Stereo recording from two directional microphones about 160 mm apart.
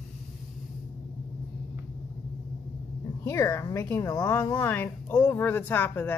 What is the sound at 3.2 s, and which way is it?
A woman's voice, 20° left (ahead or behind).